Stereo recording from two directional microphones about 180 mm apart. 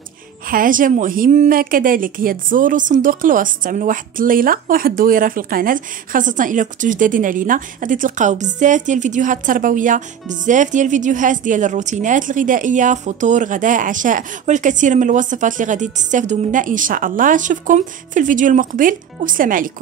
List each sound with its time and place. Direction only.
0.5 s a woman's voice: 50° right (ahead or behind)